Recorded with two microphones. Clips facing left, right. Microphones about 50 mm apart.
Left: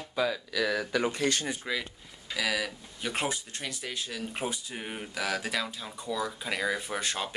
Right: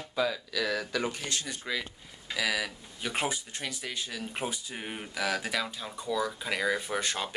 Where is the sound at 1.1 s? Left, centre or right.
Left.